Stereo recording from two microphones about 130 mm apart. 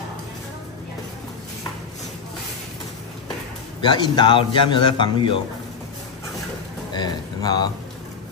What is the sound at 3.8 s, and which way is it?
A man's voice, 35° left (ahead or behind).